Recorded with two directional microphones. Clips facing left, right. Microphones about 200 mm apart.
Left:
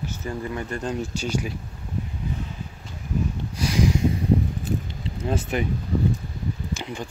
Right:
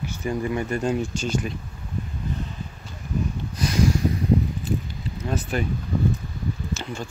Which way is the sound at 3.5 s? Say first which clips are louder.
Right 1 dB; 10° left (ahead or behind).